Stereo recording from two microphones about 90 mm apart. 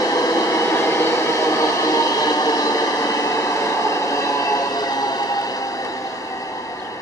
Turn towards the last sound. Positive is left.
turn(degrees=45)  # may be behind; listen again after turning